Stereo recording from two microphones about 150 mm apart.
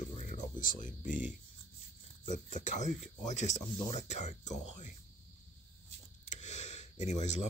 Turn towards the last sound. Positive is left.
turn(degrees=50)  # may be behind; listen again after turning